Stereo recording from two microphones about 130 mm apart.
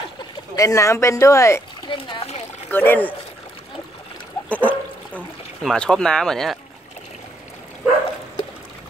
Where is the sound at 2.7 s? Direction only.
15° left (ahead or behind).